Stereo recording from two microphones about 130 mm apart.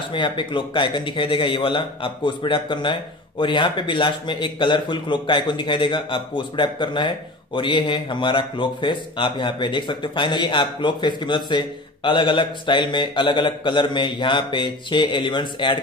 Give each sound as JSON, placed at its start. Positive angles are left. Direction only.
{"t": 0.1, "sound": "a man's voice", "side_deg": 40}